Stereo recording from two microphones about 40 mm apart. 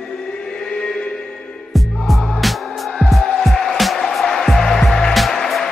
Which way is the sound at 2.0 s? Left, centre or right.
Centre.